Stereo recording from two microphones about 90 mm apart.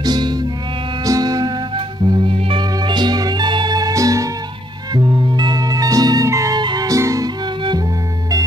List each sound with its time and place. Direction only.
0.0 s music: 50° right (ahead or behind)
2.2 s music: 65° right (ahead or behind); by 4.3 s 40° right (ahead or behind)
4.9 s music: 55° right (ahead or behind); by 6.6 s 35° right (ahead or behind)
6.6 s music: 50° right (ahead or behind)
7.0 s music: 35° right (ahead or behind)